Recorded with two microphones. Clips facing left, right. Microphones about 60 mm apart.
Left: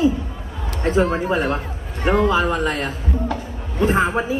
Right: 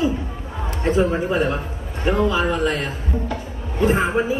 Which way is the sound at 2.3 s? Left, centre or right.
Left.